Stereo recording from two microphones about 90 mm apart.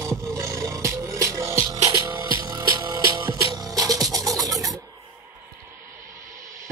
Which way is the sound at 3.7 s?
45° right (ahead or behind).